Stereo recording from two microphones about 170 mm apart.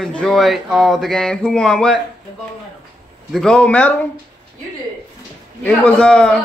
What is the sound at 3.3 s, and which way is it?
Speech, 5° left (ahead or behind).